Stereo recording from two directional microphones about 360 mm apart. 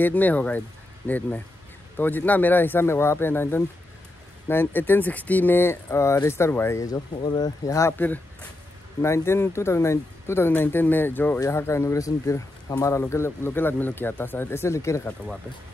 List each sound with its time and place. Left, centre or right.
0.0 s speech: centre